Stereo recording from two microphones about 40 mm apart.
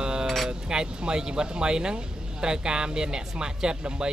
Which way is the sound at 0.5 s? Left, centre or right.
Right.